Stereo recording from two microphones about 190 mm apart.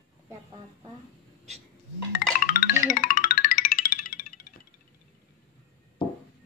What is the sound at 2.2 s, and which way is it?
Music, 50° left (ahead or behind).